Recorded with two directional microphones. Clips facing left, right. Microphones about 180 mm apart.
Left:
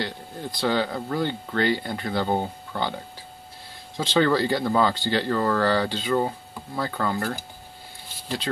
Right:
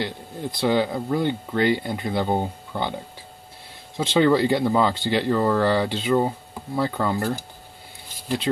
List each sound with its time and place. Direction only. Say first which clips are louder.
0.0 s speech: right 2 dB; 20° right (ahead or behind)
3.9 s speech: right 3 dB; 20° right (ahead or behind)